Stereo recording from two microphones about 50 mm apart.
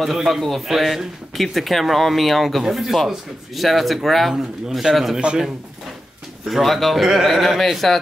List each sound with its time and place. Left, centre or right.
0.0 s a man's voice: centre
5.2 s a man's voice: centre
6.4 s speech: centre